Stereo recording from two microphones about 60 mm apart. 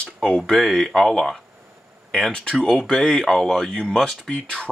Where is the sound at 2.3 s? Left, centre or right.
Centre.